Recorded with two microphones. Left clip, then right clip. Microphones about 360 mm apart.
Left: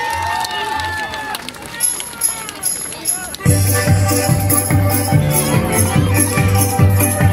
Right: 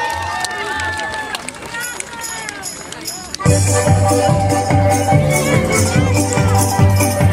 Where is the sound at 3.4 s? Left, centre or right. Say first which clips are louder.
Right 3 dB; centre.